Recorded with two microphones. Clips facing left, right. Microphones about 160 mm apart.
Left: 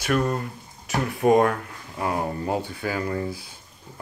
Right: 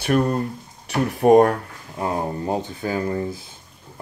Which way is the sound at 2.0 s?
25° right (ahead or behind).